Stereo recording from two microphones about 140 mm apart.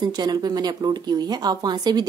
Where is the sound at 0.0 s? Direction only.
30° right (ahead or behind).